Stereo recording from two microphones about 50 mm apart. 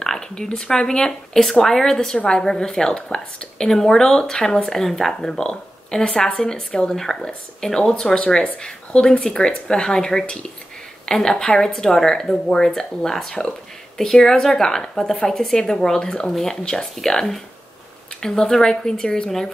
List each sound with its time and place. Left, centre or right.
0.0 s a woman's voice: centre